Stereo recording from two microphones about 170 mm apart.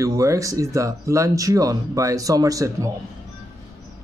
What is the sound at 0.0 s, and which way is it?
Speech, 20° right (ahead or behind).